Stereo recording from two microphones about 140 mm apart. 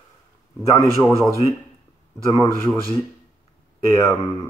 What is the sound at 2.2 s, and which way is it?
Speech, 20° left (ahead or behind).